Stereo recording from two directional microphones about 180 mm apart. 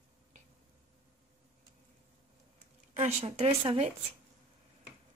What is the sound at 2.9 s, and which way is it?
Speech, 35° right (ahead or behind).